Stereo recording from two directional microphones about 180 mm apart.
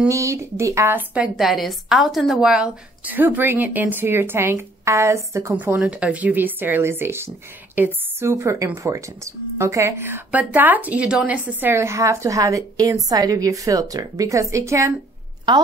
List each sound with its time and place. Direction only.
0.1 s speech: 15° right (ahead or behind)